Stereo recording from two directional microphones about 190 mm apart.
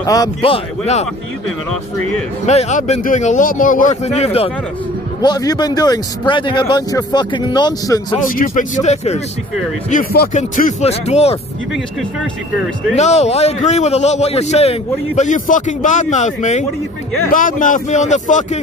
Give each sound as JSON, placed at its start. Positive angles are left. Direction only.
{"t": 0.0, "sound": "speech", "side_deg": 20}
{"t": 0.4, "sound": "a man's voice", "side_deg": 35}
{"t": 2.4, "sound": "a man's voice", "side_deg": 35}
{"t": 5.2, "sound": "speech", "side_deg": 20}
{"t": 8.3, "sound": "a man's voice", "side_deg": 45}
{"t": 12.9, "sound": "a man's voice", "side_deg": 35}